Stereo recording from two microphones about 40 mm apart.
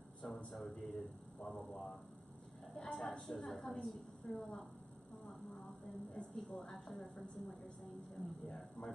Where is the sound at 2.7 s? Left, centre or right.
Left.